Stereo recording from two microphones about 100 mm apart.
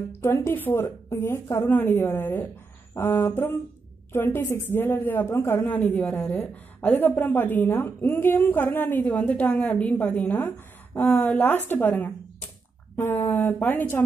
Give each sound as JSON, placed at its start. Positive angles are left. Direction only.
{"t": 0.2, "sound": "a woman's voice", "side_deg": 25}
{"t": 5.7, "sound": "a woman's voice", "side_deg": 15}